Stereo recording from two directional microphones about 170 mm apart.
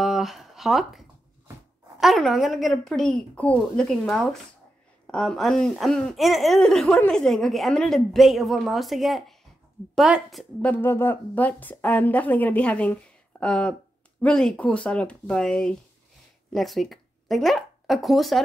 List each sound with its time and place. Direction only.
0.0 s a sound: centre (ahead or behind)
2.0 s a woman's voice: centre (ahead or behind)
10.6 s a woman's voice: 10° left (ahead or behind)